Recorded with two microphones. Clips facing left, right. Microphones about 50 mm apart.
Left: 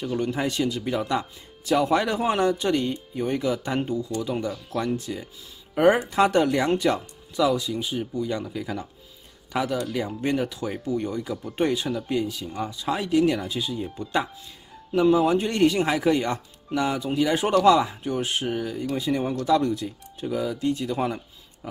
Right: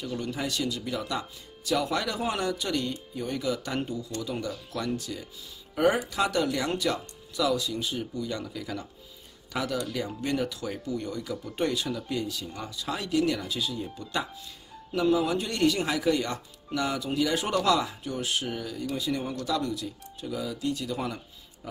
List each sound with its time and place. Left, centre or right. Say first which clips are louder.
0.0 s speech: left 6 dB; left